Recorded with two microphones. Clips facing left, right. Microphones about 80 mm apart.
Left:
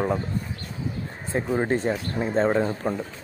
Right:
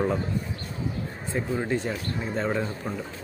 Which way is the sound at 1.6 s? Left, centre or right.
Left.